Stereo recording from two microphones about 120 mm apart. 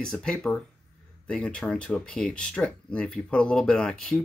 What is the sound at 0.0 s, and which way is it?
Speech, 5° left (ahead or behind).